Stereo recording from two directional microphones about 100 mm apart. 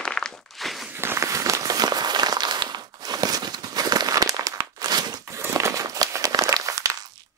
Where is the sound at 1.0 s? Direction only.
30° right (ahead or behind).